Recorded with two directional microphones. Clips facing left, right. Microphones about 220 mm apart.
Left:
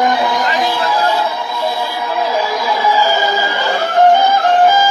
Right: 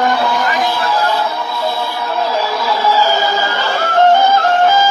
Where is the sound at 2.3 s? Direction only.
15° left (ahead or behind).